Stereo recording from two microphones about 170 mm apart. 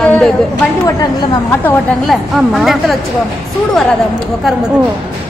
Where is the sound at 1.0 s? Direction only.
20° left (ahead or behind).